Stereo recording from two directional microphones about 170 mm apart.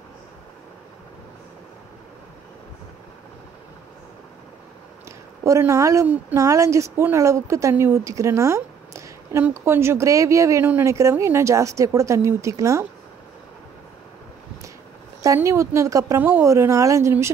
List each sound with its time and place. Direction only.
5.4 s a woman's voice: 15° right (ahead or behind)
15.2 s a woman's voice: 15° right (ahead or behind)